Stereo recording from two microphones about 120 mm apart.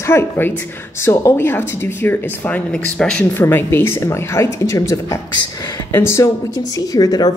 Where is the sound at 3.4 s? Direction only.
20° left (ahead or behind).